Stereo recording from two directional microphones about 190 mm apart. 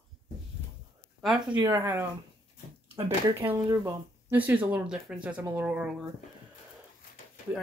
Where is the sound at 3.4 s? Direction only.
10° right (ahead or behind).